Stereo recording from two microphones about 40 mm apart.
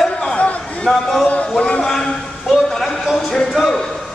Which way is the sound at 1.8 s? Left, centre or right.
Centre.